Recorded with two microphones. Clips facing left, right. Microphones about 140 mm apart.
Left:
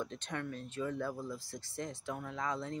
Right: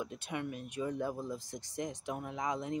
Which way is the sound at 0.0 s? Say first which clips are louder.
Right 1 dB; 10° right (ahead or behind).